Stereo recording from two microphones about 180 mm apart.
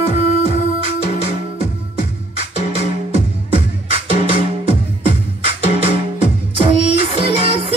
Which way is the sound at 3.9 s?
30° right (ahead or behind).